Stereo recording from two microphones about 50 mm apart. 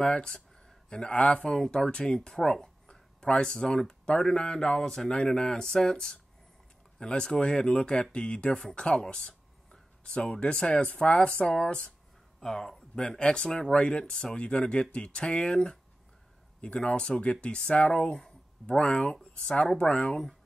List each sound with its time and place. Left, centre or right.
0.0 s speech: centre
12.4 s speech: centre